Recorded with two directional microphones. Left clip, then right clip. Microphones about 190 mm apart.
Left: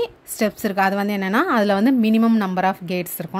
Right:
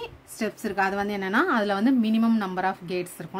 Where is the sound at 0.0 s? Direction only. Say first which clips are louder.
Left 10 dB; 40° left (ahead or behind).